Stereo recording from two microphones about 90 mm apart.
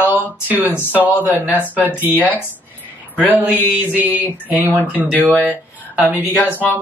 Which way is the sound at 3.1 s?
20° right (ahead or behind).